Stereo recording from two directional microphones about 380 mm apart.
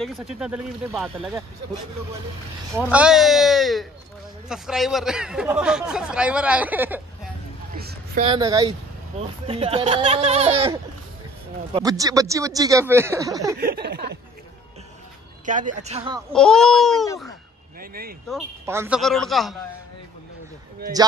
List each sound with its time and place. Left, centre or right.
0.0 s speech: centre
2.8 s speech: centre
7.7 s a sound: right
9.5 s speech: centre
13.6 s a sound: right
15.4 s speech: centre
16.3 s speech: centre
17.7 s speech: right
18.3 s speech: centre